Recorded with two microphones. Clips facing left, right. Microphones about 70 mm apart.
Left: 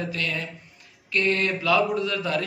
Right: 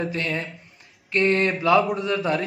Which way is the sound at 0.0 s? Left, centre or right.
Right.